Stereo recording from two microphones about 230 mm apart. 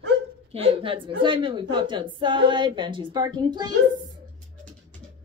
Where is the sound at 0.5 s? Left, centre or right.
Right.